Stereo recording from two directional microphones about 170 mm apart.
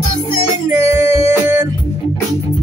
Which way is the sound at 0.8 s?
35° left (ahead or behind).